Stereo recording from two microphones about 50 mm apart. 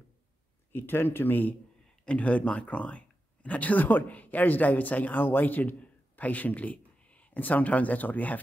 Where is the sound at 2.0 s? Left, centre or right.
Left.